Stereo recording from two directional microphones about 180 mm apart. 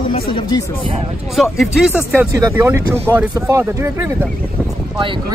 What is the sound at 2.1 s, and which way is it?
A woman's voice, 10° right (ahead or behind).